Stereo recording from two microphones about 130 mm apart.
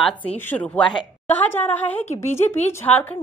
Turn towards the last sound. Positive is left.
turn(degrees=15)  # may be behind; listen again after turning